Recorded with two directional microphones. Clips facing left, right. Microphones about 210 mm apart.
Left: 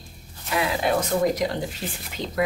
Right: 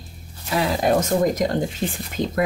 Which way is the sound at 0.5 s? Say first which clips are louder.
Right 4 dB; 40° right (ahead or behind).